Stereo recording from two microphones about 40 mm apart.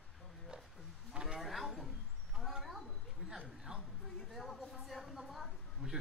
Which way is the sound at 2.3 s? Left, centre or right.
Centre.